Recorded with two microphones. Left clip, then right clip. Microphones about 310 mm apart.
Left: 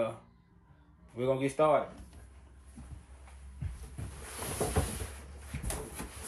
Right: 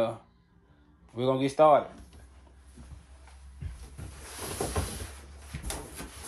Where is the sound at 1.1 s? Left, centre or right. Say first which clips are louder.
Right 3 dB; right.